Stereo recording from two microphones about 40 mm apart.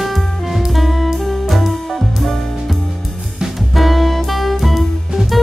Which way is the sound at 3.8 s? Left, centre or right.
Centre.